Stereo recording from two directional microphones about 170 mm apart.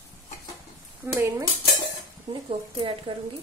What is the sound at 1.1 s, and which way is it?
Dishes, 15° right (ahead or behind).